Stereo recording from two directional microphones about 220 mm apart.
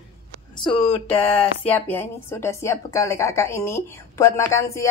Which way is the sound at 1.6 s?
10° left (ahead or behind).